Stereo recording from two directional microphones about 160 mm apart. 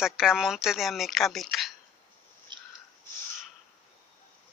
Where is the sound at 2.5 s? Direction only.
30° right (ahead or behind).